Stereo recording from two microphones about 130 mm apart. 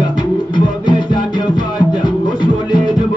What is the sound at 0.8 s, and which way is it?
Music, 35° left (ahead or behind).